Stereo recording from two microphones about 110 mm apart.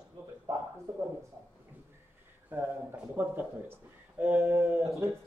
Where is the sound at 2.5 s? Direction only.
20° right (ahead or behind).